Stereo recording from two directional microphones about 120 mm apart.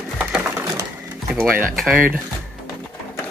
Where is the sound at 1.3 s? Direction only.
20° right (ahead or behind).